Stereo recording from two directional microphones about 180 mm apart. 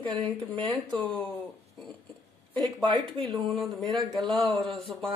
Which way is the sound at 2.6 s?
25° right (ahead or behind).